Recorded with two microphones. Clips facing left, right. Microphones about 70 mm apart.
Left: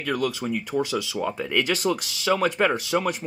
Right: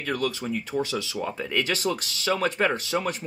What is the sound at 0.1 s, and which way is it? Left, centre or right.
Speech, centre.